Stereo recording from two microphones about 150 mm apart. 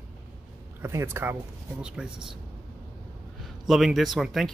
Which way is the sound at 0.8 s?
15° right (ahead or behind).